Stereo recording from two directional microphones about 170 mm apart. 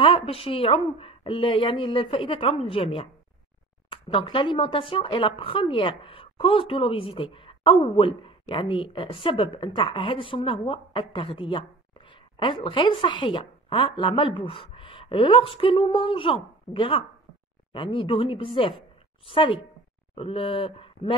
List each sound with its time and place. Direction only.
0.0 s a woman's voice: 30° left (ahead or behind)